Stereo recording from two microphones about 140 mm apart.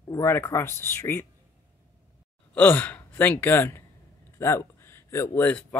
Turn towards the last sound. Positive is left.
turn(degrees=20)  # may be behind; listen again after turning